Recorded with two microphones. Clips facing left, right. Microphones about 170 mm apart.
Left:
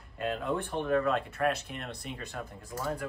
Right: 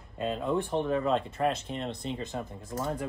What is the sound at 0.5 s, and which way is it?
Speech, 20° right (ahead or behind).